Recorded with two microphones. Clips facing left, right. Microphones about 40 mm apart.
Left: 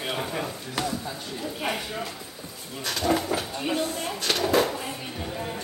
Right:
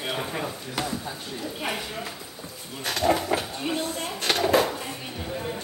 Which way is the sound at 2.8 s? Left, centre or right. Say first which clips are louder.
Right 1 dB; right.